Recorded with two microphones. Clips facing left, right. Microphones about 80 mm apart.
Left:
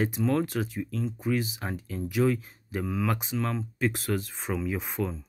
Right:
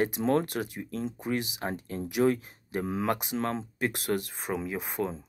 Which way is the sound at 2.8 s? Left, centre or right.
Right.